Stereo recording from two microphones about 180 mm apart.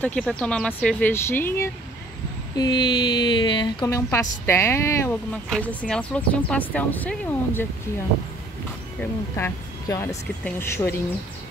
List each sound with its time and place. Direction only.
0.0 s speech: 5° left (ahead or behind)
2.5 s speech: 25° left (ahead or behind)
9.0 s speech: 15° left (ahead or behind)